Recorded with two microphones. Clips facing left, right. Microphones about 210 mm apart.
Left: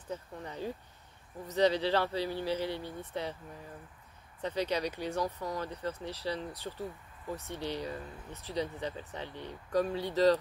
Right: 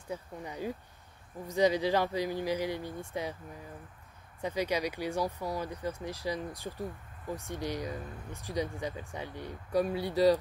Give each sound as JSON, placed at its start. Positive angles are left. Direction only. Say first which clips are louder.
{"t": 0.1, "sound": "speech", "louder": "right 1 dB", "side_deg": -10}
{"t": 4.4, "sound": "speech", "louder": "right 1 dB", "side_deg": -10}